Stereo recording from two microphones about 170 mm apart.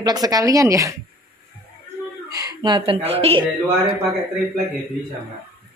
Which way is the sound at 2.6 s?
30° right (ahead or behind).